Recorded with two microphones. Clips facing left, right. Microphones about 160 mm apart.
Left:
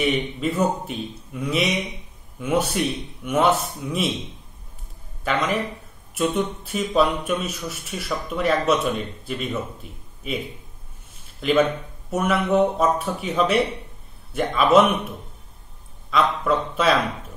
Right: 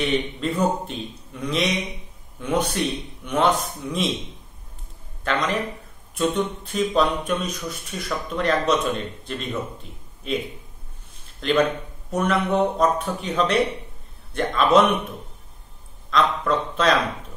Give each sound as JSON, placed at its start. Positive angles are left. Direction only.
{"t": 0.0, "sound": "a man's voice", "side_deg": 5}
{"t": 5.2, "sound": "a man's voice", "side_deg": 5}
{"t": 11.4, "sound": "a man's voice", "side_deg": 5}
{"t": 16.1, "sound": "a man's voice", "side_deg": 5}